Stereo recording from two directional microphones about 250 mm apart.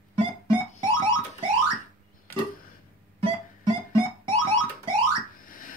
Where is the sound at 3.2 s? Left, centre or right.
Right.